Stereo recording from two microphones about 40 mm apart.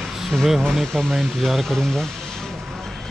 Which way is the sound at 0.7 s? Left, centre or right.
Centre.